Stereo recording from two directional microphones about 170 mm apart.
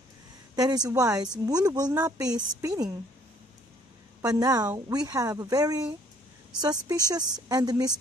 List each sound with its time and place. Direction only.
0.6 s speech: 20° right (ahead or behind)
4.2 s speech: 20° right (ahead or behind)
6.9 s speech: 20° right (ahead or behind)